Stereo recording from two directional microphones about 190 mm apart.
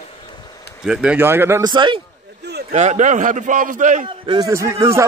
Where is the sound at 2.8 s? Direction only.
40° right (ahead or behind).